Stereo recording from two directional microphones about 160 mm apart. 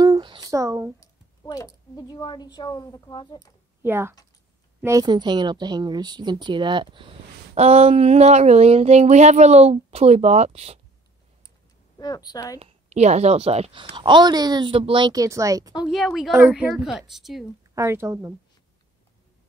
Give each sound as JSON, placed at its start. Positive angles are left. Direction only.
{"t": 0.0, "sound": "a sound", "side_deg": -25}
{"t": 0.9, "sound": "speech", "side_deg": 20}
{"t": 3.8, "sound": "a woman's voice", "side_deg": -15}
{"t": 7.5, "sound": "speech", "side_deg": -40}
{"t": 12.0, "sound": "speech", "side_deg": 25}
{"t": 12.5, "sound": "speech", "side_deg": -40}
{"t": 13.9, "sound": "a woman's voice", "side_deg": -30}
{"t": 15.8, "sound": "a woman's voice", "side_deg": 0}
{"t": 17.7, "sound": "speech", "side_deg": -15}